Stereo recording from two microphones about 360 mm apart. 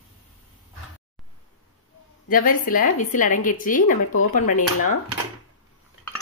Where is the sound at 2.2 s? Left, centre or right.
Left.